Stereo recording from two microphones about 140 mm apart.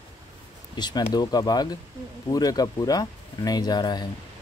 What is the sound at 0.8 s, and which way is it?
Speech, 30° left (ahead or behind).